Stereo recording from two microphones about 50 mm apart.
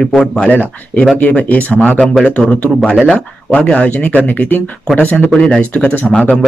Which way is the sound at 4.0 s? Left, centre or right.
Left.